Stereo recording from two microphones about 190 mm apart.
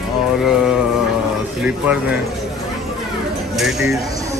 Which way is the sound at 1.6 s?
5° right (ahead or behind).